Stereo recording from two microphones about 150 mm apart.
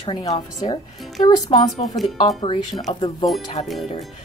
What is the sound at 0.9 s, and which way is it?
Speech, centre (ahead or behind).